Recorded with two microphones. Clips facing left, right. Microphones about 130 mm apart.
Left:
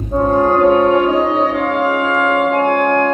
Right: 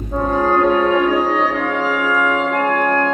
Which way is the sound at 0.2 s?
20° left (ahead or behind).